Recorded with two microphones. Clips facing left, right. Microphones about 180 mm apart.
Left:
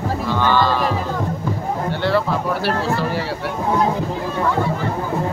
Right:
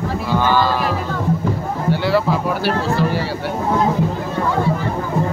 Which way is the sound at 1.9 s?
5° right (ahead or behind).